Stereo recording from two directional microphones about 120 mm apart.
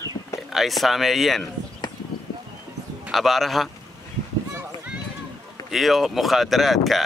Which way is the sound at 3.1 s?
Centre (ahead or behind).